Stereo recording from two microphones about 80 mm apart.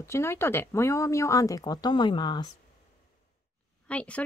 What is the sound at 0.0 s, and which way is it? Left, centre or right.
Speech, left.